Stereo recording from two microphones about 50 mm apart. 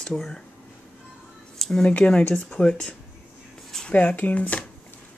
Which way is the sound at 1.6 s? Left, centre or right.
Centre.